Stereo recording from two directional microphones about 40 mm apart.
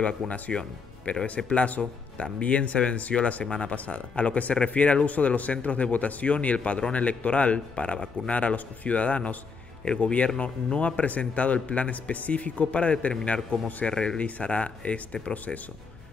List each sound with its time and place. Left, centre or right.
0.0 s speech: left
1.2 s speech: left
13.8 s speech: left
14.2 s speech: left
15.3 s speech: left